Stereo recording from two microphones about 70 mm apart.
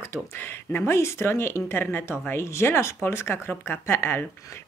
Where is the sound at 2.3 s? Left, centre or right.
Left.